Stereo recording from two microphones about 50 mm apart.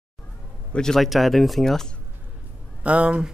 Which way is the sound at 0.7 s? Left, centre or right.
Centre.